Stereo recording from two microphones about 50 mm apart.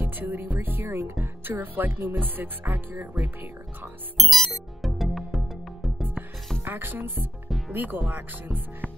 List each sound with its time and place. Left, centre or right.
0.0 s speech: right
0.9 s speech: right
4.2 s music: centre
6.6 s speech: right
7.4 s music: centre
7.7 s speech: right